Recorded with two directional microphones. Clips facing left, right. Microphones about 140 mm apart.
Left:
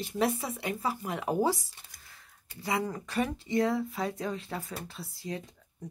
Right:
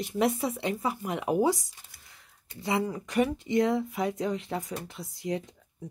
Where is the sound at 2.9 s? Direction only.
15° right (ahead or behind).